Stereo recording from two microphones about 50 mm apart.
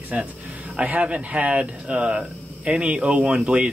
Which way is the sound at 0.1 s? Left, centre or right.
Right.